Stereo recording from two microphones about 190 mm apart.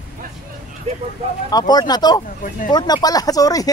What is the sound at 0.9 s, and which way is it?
Speech, 35° right (ahead or behind).